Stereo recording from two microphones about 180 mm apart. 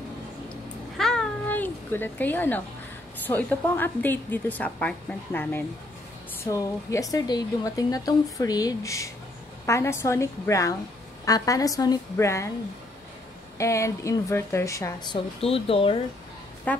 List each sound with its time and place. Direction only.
0.9 s a sound: 5° left (ahead or behind)
3.3 s a woman's voice: 10° left (ahead or behind)
13.6 s a woman's voice: 15° left (ahead or behind)
15.4 s speech: 30° left (ahead or behind)
16.7 s a woman's voice: 10° left (ahead or behind)